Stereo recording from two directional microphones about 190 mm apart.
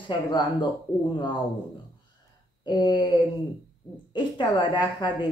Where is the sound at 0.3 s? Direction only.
25° left (ahead or behind).